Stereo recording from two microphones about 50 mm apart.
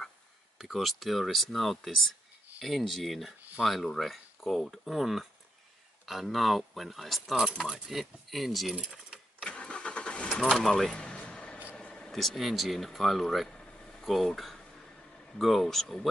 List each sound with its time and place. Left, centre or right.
0.6 s speech: centre
7.9 s speech: centre
8.9 s sewing machine: centre
9.5 s vehicle: centre
10.3 s speech: centre
11.0 s a sound: centre
11.7 s vehicle: centre
12.1 s speech: centre
14.0 s speech: centre